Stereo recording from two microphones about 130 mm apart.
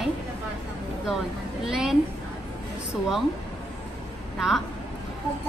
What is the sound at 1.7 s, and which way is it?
Speech, 5° right (ahead or behind).